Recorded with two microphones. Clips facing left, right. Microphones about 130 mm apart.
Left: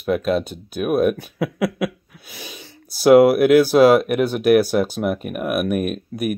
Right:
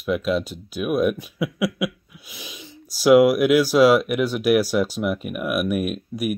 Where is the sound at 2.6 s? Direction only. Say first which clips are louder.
Left 3 dB; 65° left (ahead or behind).